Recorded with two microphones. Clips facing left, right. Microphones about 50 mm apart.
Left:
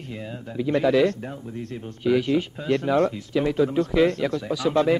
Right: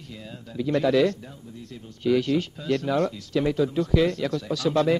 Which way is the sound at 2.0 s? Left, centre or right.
Centre.